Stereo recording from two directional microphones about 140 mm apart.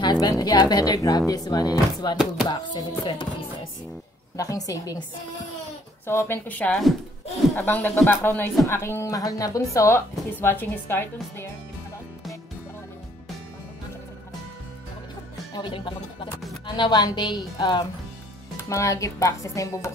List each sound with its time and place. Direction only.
0.0 s a woman's voice: 30° left (ahead or behind)
4.4 s speech: 25° left (ahead or behind)
6.0 s a woman's voice: 15° left (ahead or behind)
7.5 s a woman's voice: 15° left (ahead or behind)
15.5 s a woman's voice: 35° left (ahead or behind)